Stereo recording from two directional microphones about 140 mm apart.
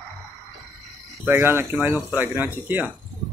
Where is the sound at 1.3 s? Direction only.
15° right (ahead or behind).